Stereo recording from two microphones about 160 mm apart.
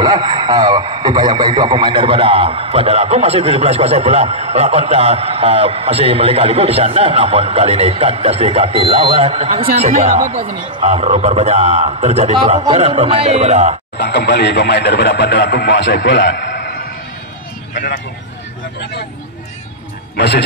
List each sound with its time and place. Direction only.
0.0 s speech: 25° right (ahead or behind); by 13.7 s 45° right (ahead or behind)
13.9 s speech: 90° left
20.2 s speech: 90° left